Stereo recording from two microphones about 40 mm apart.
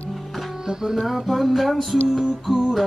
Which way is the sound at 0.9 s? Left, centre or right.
Centre.